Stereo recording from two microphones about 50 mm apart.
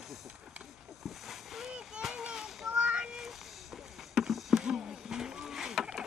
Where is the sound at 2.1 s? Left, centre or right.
Centre.